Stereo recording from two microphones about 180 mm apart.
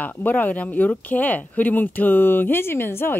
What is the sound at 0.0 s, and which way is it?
Speech, 10° left (ahead or behind).